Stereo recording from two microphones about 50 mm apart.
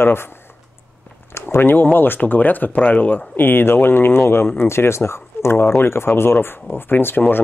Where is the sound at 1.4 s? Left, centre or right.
Left.